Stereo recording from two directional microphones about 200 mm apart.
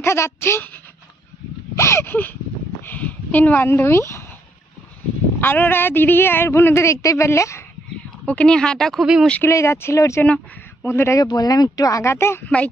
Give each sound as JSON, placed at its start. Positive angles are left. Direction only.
{"t": 0.0, "sound": "speech", "side_deg": 10}
{"t": 1.8, "sound": "speech", "side_deg": 15}
{"t": 5.4, "sound": "speech", "side_deg": 10}